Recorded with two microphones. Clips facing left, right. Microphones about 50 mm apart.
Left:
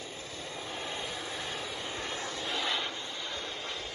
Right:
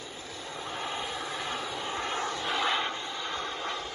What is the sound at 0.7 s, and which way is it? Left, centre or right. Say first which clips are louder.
Vehicle: right 4 dB; centre.